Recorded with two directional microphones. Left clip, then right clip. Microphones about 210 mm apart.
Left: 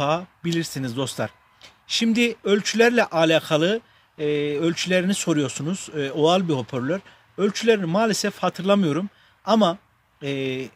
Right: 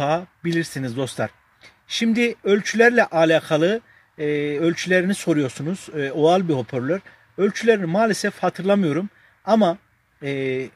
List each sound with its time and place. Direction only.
0.0 s speech: 10° left (ahead or behind)
10.2 s speech: 10° left (ahead or behind)